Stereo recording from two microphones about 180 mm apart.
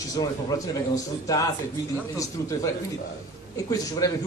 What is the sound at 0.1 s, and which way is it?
A man's voice, 20° left (ahead or behind).